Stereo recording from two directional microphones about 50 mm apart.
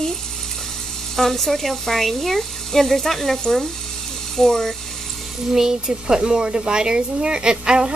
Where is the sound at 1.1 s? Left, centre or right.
Centre.